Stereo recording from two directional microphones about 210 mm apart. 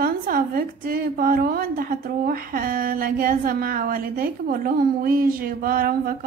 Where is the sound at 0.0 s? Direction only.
45° right (ahead or behind).